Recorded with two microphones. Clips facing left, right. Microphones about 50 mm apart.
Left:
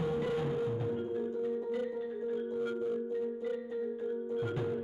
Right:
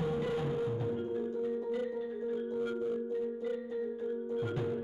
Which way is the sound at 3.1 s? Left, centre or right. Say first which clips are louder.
Even; centre.